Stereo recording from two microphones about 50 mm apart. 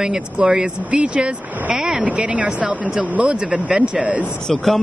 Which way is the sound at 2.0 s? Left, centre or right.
Right.